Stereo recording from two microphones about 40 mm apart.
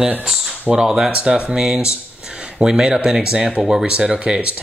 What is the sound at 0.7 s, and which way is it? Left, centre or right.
Speech, centre.